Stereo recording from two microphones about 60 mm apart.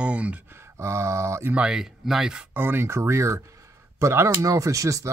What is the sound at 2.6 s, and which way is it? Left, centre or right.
Speech, right.